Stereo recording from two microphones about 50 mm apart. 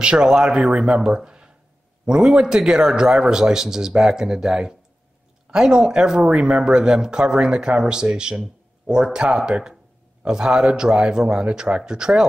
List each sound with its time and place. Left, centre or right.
0.0 s speech: centre